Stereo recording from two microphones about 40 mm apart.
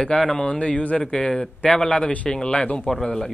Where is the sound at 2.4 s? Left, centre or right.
Left.